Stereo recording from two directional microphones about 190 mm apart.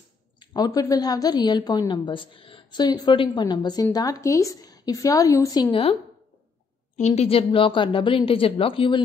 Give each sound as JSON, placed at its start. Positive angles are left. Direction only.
{"t": 0.4, "sound": "a woman's voice", "side_deg": 20}
{"t": 7.0, "sound": "a woman's voice", "side_deg": 35}